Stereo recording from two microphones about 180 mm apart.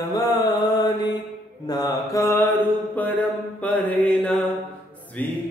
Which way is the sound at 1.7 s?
20° left (ahead or behind).